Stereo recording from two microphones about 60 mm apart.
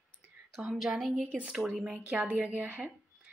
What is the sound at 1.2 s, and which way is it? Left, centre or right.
Speech, right.